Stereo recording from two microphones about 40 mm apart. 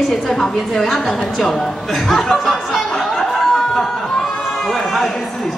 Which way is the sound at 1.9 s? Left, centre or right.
Centre.